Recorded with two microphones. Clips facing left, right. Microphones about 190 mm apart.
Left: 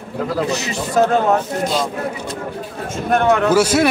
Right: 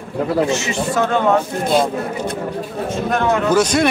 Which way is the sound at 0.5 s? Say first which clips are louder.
Left 1 dB; 40° left (ahead or behind).